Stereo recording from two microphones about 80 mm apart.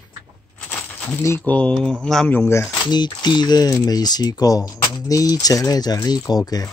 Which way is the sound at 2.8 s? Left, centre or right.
Left.